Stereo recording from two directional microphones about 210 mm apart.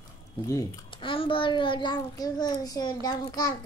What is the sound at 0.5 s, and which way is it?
A child's voice, 20° left (ahead or behind).